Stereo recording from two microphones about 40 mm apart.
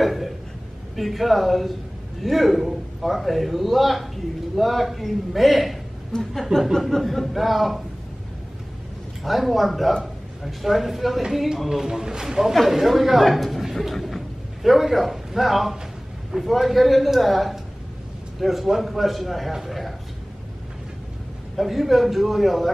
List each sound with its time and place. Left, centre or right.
0.0 s a sound: centre
0.9 s a man's voice: centre
6.1 s speech: left
6.7 s a man's voice: centre
9.2 s a man's voice: centre
21.5 s a man's voice: centre